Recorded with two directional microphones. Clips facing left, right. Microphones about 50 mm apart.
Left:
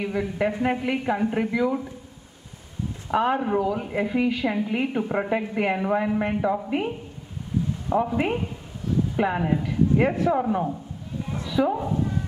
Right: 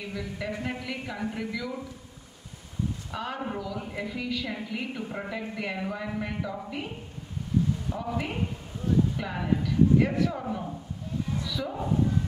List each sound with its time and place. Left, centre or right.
0.0 s a woman's voice: left
3.1 s a woman's voice: left
7.9 s a woman's voice: left
9.1 s a woman's voice: left